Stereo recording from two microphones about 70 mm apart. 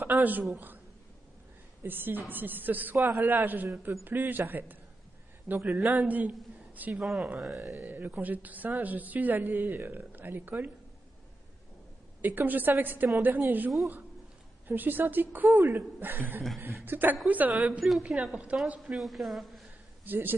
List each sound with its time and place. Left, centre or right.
0.0 s a woman's voice: right
1.8 s a woman's voice: right
5.6 s a woman's voice: centre
6.9 s a woman's voice: centre
7.8 s a woman's voice: right
12.2 s a woman's voice: right
14.7 s a woman's voice: right
17.6 s a woman's voice: centre
18.8 s a woman's voice: centre
20.1 s a woman's voice: right